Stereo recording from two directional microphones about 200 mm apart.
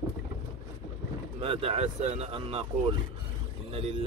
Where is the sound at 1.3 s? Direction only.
30° right (ahead or behind).